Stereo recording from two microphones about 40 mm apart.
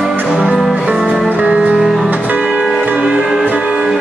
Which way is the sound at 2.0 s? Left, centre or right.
Right.